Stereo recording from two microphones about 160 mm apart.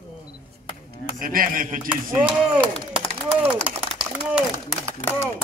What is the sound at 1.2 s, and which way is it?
Speech, 60° right (ahead or behind).